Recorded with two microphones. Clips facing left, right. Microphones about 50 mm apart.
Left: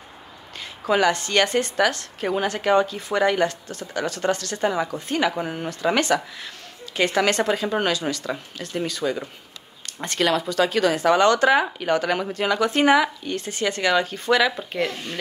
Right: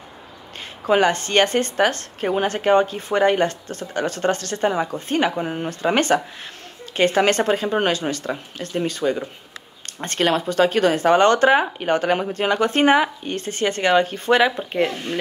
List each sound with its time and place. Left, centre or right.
0.8 s a woman's voice: right